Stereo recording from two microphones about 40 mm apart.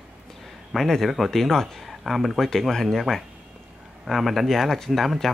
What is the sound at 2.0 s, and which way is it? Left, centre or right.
Speech, centre.